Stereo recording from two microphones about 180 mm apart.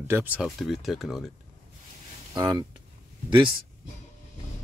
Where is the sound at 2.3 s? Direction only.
25° right (ahead or behind).